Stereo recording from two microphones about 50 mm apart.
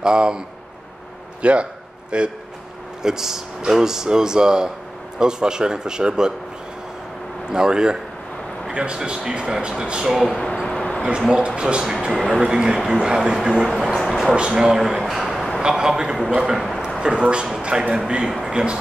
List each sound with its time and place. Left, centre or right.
0.0 s speech: centre
1.4 s a sound: right
3.0 s speech: centre
7.5 s speech: centre
10.1 s speech: centre
10.7 s a sound: centre
11.1 s speech: centre
11.8 s speech: centre
12.4 s speech: centre
13.3 s speech: centre
13.9 s a sound: centre
14.5 s speech: centre
15.6 s a man's voice: centre